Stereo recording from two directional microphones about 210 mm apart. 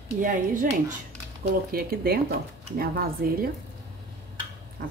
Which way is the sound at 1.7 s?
45° right (ahead or behind).